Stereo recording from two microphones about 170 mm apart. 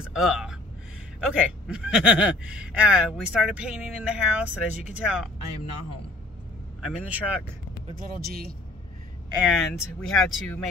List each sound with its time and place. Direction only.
0.0 s speech: 5° right (ahead or behind)
6.8 s speech: 5° right (ahead or behind)
8.0 s speech: 65° right (ahead or behind)
9.4 s speech: centre (ahead or behind)